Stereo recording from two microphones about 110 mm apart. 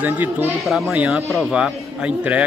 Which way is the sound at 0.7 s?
Centre (ahead or behind).